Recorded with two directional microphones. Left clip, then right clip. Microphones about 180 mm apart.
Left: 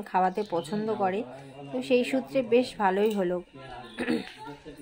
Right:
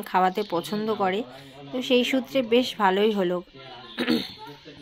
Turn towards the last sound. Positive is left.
turn(degrees=-10)  # may be behind; listen again after turning